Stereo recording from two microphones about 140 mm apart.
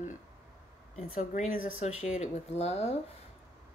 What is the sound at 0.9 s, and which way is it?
Speech, 60° left (ahead or behind).